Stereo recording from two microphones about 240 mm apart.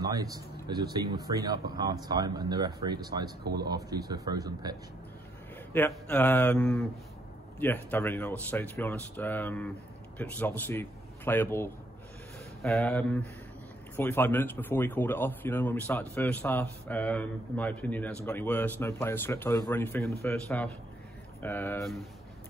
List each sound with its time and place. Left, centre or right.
0.0 s speech: centre
5.7 s a man's voice: centre